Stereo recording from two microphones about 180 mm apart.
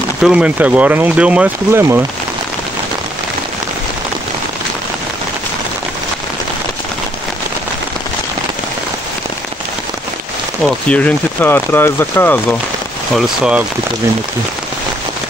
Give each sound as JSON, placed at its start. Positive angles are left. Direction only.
{"t": 0.2, "sound": "speech", "side_deg": -5}
{"t": 10.9, "sound": "speech", "side_deg": 10}
{"t": 13.1, "sound": "speech", "side_deg": -5}